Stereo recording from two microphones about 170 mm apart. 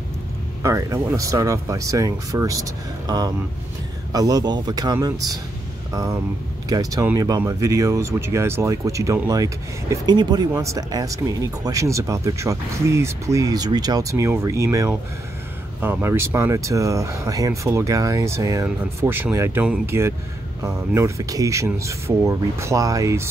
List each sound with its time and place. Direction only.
0.6 s speech: 20° right (ahead or behind)